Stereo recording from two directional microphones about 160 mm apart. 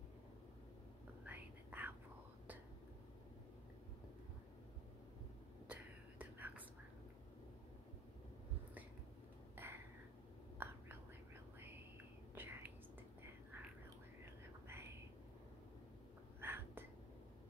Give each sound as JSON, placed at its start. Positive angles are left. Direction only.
{"t": 1.2, "sound": "whispering", "side_deg": -10}
{"t": 5.7, "sound": "whispering", "side_deg": -10}
{"t": 9.6, "sound": "a sound", "side_deg": -15}
{"t": 10.6, "sound": "whispering", "side_deg": -15}
{"t": 12.4, "sound": "whispering", "side_deg": -10}
{"t": 14.2, "sound": "whispering", "side_deg": -15}
{"t": 16.3, "sound": "whispering", "side_deg": -15}